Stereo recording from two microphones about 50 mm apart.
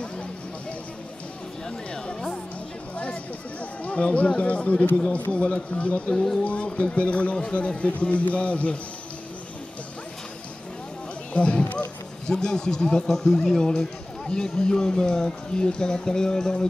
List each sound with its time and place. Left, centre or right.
0.0 s a sound: left
3.8 s a man's voice: left
6.1 s speech: centre
6.4 s a man's voice: left
11.3 s speech: left